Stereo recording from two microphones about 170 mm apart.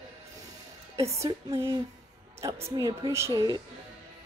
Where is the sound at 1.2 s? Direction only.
15° right (ahead or behind).